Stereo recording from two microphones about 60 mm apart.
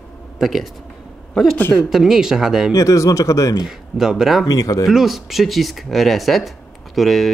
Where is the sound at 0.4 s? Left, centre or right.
Centre.